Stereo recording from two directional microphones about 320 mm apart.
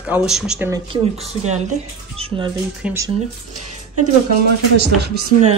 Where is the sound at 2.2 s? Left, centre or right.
Centre.